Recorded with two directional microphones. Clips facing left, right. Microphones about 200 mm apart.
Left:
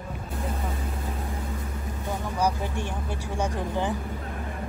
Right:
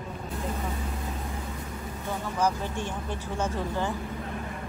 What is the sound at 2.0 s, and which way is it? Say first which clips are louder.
Speech: left 1 dB; 10° left (ahead or behind).